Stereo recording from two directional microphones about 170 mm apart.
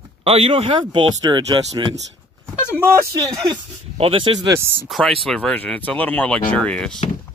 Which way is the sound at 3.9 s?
30° right (ahead or behind).